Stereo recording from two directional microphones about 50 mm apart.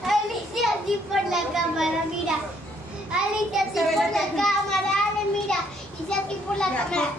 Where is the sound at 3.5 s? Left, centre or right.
Centre.